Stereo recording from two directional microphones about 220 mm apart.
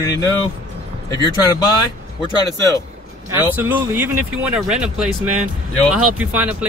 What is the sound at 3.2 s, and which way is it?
Speech, 10° right (ahead or behind).